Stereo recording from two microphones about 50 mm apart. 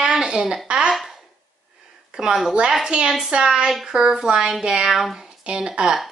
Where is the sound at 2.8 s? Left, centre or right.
Centre.